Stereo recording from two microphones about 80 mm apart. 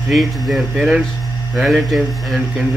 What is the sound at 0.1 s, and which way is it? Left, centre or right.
Speech, centre.